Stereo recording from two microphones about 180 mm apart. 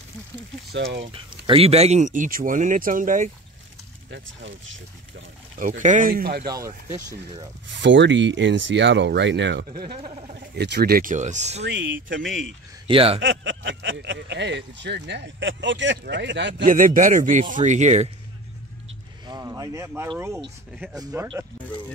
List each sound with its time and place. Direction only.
0.7 s speech: 70° right (ahead or behind)
1.0 s speech: 30° right (ahead or behind); by 3.3 s 50° right (ahead or behind)
4.1 s speech: 90° right
5.6 s speech: 45° right (ahead or behind)
6.4 s speech: 20° right (ahead or behind)
7.7 s speech: 85° right
9.8 s speech: 30° right (ahead or behind)
10.5 s speech: 65° right (ahead or behind); by 11.6 s 40° right (ahead or behind)
11.6 s speech: 90° right
12.8 s speech: 30° right (ahead or behind)
13.2 s speech: 90° right
16.6 s speech: 50° right (ahead or behind)
19.2 s a sound: 20° right (ahead or behind)
20.9 s speech: 15° right (ahead or behind)